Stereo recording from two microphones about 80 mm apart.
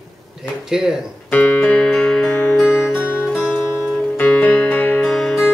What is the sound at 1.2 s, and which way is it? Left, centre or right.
Speech, left.